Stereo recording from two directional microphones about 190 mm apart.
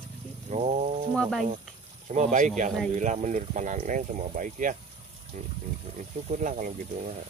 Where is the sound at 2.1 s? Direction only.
40° right (ahead or behind).